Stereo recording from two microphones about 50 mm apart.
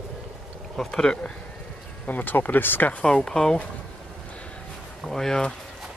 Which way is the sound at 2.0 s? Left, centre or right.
Left.